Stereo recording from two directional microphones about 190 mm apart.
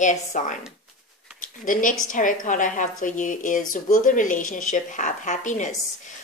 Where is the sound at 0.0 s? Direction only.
40° left (ahead or behind).